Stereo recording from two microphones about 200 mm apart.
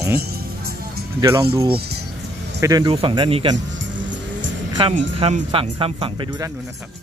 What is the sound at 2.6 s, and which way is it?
Speech, 20° right (ahead or behind).